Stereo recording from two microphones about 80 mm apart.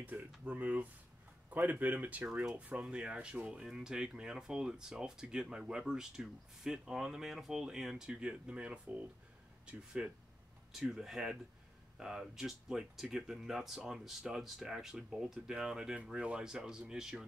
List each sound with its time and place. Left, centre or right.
0.0 s speech: right